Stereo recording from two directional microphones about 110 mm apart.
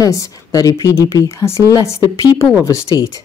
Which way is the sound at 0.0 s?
30° left (ahead or behind).